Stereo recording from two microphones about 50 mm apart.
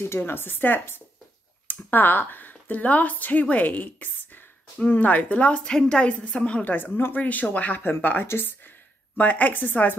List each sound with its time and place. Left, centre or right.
0.2 s a woman's voice: left
5.6 s a woman's voice: centre
6.6 s a woman's voice: left